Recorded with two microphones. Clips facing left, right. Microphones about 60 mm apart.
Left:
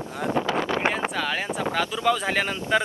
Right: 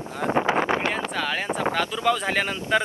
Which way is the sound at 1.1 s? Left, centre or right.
Centre.